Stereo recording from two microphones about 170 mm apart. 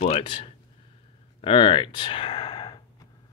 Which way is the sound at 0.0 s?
35° left (ahead or behind).